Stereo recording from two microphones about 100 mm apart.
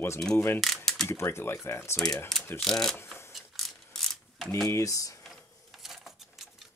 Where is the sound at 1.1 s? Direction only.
25° left (ahead or behind).